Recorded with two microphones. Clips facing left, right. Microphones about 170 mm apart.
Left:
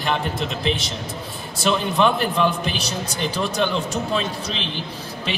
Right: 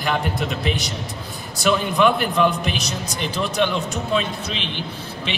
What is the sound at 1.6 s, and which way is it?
A man's voice, 30° left (ahead or behind).